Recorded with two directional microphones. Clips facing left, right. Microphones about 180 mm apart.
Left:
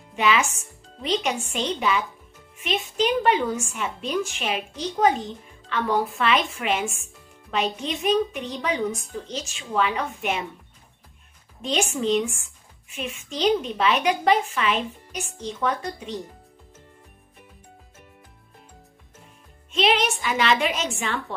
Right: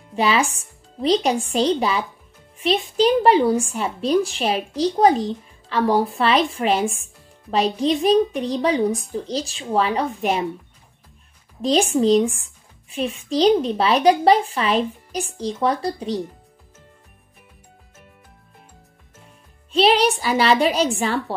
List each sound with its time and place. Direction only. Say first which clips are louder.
0.1 s a woman's voice: right 3 dB; 35° right (ahead or behind)
11.6 s a woman's voice: right 7 dB; 35° right (ahead or behind)
19.7 s a woman's voice: right 5 dB; 35° right (ahead or behind)